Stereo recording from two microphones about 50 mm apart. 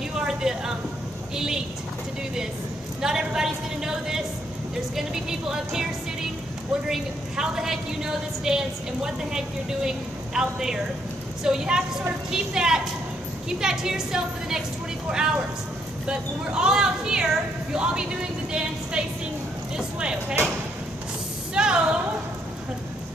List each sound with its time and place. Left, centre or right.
0.2 s a sound: centre
1.3 s a woman's voice: centre
3.0 s a woman's voice: centre
6.9 s a woman's voice: centre
15.0 s a woman's voice: centre
21.5 s a sound: centre